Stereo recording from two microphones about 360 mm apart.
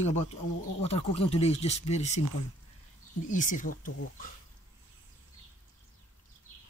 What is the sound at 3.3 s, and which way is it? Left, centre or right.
Speech, left.